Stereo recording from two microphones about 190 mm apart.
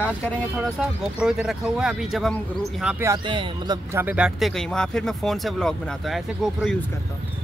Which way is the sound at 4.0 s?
5° right (ahead or behind).